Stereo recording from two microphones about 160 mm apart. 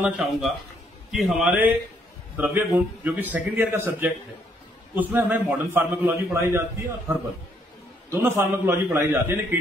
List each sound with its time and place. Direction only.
0.0 s a man's voice: centre (ahead or behind)
8.1 s a man's voice: 15° right (ahead or behind)